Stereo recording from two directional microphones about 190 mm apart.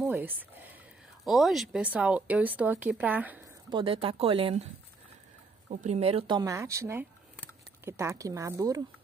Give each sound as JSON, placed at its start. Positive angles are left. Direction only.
{"t": 0.0, "sound": "a sound", "side_deg": -10}
{"t": 1.2, "sound": "speech", "side_deg": 0}
{"t": 3.7, "sound": "speech", "side_deg": -30}
{"t": 5.7, "sound": "speech", "side_deg": -40}